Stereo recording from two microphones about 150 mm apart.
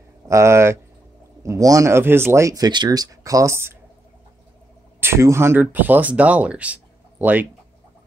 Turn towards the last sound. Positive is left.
turn(degrees=-10)  # may be behind; listen again after turning